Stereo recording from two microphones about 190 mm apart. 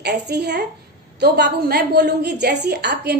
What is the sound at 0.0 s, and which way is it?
A woman's voice, 60° right (ahead or behind).